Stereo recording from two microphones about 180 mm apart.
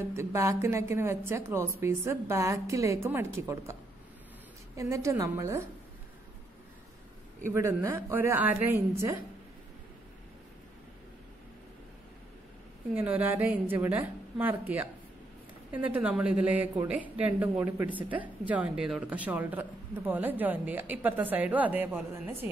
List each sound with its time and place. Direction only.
0.0 s a woman's voice: 15° right (ahead or behind)
4.7 s a woman's voice: 15° right (ahead or behind)
7.5 s a woman's voice: 15° right (ahead or behind)
12.9 s a woman's voice: 10° right (ahead or behind)